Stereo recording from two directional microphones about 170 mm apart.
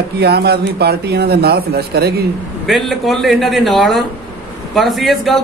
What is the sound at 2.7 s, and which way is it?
A man's voice, centre (ahead or behind).